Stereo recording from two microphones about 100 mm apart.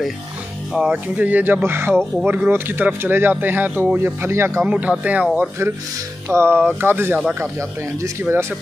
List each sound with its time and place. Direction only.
0.7 s speech: 15° right (ahead or behind)
4.6 s speech: 15° right (ahead or behind)